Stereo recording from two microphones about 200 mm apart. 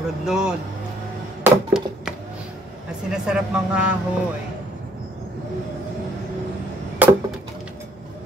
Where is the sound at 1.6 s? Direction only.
5° right (ahead or behind).